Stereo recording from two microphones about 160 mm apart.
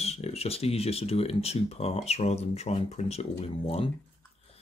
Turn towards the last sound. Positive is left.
turn(degrees=35)  # may be behind; listen again after turning